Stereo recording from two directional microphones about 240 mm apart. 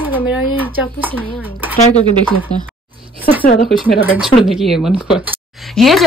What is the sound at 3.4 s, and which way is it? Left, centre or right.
Speech, left.